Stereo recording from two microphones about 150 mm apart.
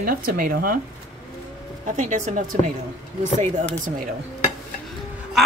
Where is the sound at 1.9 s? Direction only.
55° right (ahead or behind).